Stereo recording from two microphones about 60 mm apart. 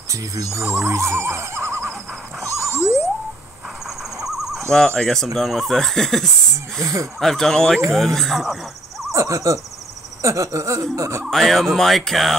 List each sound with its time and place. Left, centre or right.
0.1 s speech: right
3.8 s owl: centre
4.6 s speech: centre
6.8 s a sound: right
7.2 s speech: centre
9.1 s owl: right
10.2 s a sound: right
11.2 s speech: centre